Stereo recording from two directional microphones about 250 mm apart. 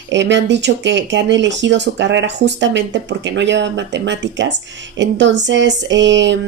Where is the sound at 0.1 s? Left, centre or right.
Right.